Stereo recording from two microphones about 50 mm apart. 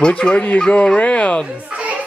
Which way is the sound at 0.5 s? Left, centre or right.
Centre.